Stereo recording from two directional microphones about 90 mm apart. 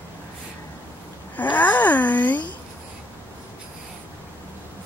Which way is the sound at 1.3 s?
20° left (ahead or behind).